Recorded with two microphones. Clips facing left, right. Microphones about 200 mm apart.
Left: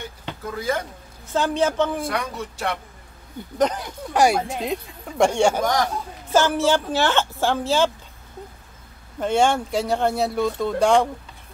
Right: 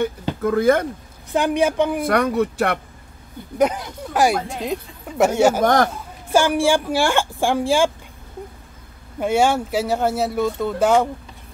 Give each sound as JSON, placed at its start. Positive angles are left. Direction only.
{"t": 0.4, "sound": "speech", "side_deg": -55}
{"t": 1.3, "sound": "speech", "side_deg": -15}
{"t": 2.0, "sound": "speech", "side_deg": -55}
{"t": 3.5, "sound": "speech", "side_deg": -10}
{"t": 5.6, "sound": "speech", "side_deg": -55}
{"t": 6.3, "sound": "speech", "side_deg": -10}
{"t": 9.2, "sound": "speech", "side_deg": -5}